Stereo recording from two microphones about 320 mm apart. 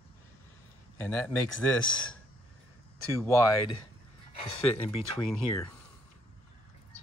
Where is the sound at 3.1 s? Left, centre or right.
Centre.